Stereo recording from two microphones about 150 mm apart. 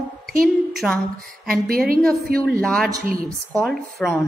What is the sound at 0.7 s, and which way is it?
Speech, centre (ahead or behind).